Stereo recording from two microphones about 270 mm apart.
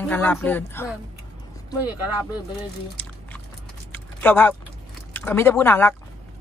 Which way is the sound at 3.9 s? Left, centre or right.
Centre.